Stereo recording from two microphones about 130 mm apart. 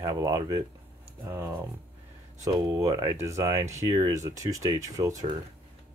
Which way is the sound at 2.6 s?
25° right (ahead or behind).